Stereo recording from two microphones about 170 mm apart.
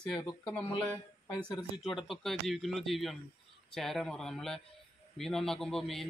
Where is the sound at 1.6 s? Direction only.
Centre (ahead or behind).